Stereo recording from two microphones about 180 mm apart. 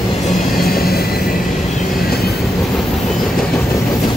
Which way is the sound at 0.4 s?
55° left (ahead or behind).